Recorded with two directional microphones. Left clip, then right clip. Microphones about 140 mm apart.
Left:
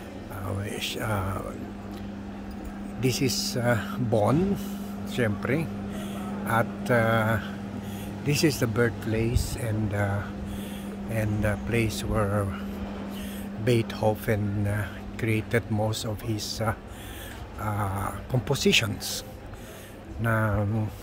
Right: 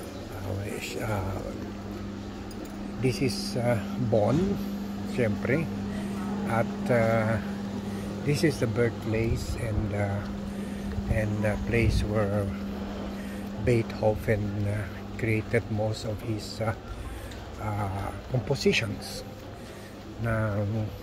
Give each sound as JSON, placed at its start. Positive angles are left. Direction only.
{"t": 0.7, "sound": "a sound", "side_deg": 25}
{"t": 3.0, "sound": "speech", "side_deg": 35}
{"t": 11.1, "sound": "speech", "side_deg": 25}
{"t": 13.7, "sound": "speech", "side_deg": 25}
{"t": 20.2, "sound": "speech", "side_deg": 25}